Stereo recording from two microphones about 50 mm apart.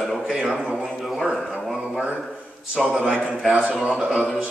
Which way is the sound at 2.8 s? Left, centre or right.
Right.